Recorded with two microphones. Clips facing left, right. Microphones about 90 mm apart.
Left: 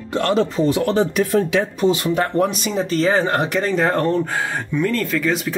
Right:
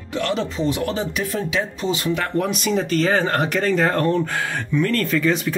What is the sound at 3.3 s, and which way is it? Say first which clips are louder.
Speech: left 1 dB; 15° left (ahead or behind).